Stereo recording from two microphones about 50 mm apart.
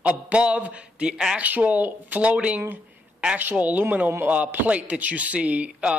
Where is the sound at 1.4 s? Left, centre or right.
Right.